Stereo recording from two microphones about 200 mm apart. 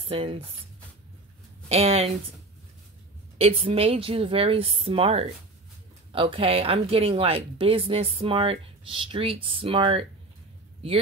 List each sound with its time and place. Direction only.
0.0 s speech: 30° right (ahead or behind)
1.7 s speech: 30° right (ahead or behind)
3.3 s speech: 30° right (ahead or behind)